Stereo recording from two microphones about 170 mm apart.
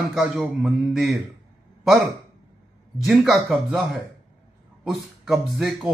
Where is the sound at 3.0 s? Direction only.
Centre (ahead or behind).